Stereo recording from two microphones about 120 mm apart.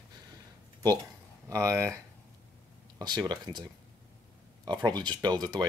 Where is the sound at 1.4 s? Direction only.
25° right (ahead or behind).